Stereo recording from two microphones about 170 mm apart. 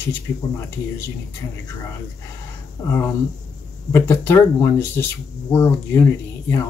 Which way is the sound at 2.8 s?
15° left (ahead or behind).